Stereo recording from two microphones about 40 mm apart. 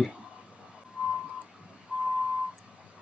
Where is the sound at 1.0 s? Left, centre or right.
Right.